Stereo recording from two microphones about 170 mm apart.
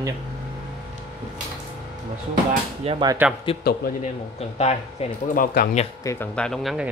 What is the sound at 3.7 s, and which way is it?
Speech, 60° left (ahead or behind).